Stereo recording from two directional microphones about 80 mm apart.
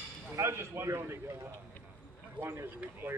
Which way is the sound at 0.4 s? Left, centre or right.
Right.